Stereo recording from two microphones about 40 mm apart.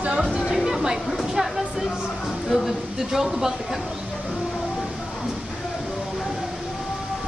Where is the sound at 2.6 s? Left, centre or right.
Centre.